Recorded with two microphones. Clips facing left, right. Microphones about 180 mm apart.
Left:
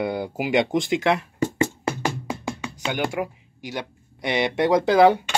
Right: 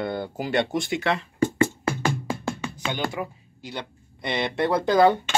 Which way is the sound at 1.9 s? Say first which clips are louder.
Right 1 dB; 15° left (ahead or behind).